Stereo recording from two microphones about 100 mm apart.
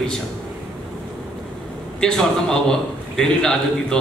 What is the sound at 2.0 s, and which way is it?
A man's voice, 5° left (ahead or behind).